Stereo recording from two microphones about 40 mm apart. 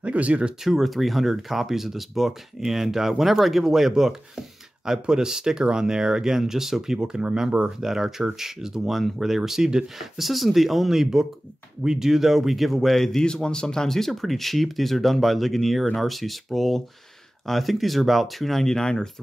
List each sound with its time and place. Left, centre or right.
0.0 s speech: right
0.7 s speech: centre; by 7.5 s right
7.8 s speech: centre
9.9 s speech: centre
13.2 s speech: left
18.8 s speech: centre